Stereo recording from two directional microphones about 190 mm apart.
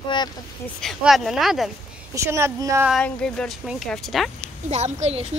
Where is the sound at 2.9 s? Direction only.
5° left (ahead or behind).